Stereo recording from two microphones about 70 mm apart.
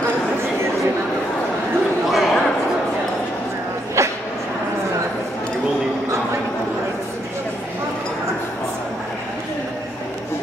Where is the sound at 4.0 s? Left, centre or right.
Right.